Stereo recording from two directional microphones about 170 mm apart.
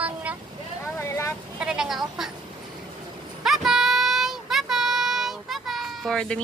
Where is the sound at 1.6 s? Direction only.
5° right (ahead or behind).